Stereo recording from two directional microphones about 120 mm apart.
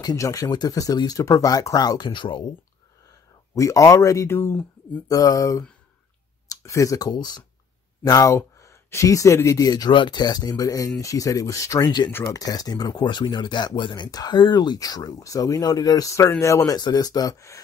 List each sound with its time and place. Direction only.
0.0 s speech: 30° left (ahead or behind)
3.5 s speech: 25° left (ahead or behind)
12.4 s speech: 30° left (ahead or behind)